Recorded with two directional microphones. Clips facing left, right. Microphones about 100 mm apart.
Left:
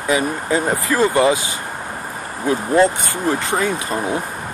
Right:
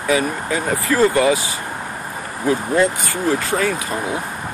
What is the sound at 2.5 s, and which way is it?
Speech, 20° left (ahead or behind).